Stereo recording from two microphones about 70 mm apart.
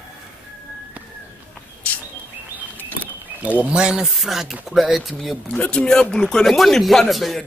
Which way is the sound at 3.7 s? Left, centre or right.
Centre.